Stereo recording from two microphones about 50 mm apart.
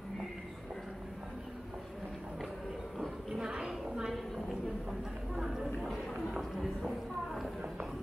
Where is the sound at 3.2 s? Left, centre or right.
Centre.